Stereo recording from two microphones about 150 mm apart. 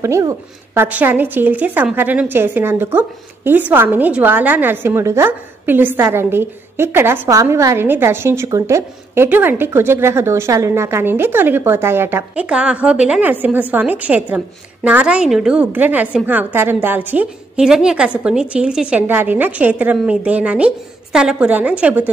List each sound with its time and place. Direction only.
0.0 s a woman's voice: 20° right (ahead or behind)